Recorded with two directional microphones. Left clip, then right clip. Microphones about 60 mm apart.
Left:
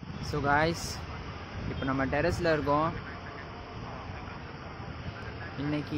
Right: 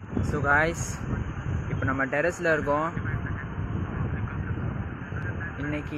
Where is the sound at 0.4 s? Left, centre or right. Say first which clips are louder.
Right 4 dB; centre.